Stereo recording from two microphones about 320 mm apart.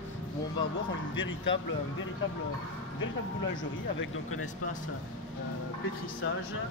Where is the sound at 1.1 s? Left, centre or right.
Left.